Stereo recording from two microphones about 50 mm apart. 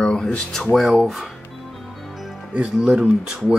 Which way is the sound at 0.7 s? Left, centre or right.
Centre.